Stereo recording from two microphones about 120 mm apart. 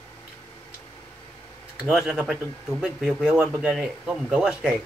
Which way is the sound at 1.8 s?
5° right (ahead or behind).